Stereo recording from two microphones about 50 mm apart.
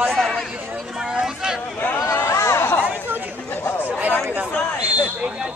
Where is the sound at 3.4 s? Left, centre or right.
Left.